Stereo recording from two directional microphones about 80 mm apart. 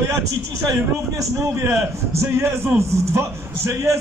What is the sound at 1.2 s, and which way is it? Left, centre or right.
A man's voice, right.